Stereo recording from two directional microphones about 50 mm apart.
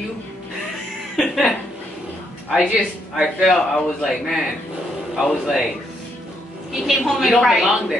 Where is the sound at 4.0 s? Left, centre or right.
Centre.